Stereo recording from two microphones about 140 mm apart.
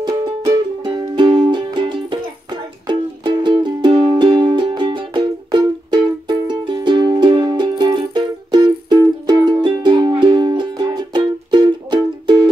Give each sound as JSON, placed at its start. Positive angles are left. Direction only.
{"t": 0.5, "sound": "music", "side_deg": -30}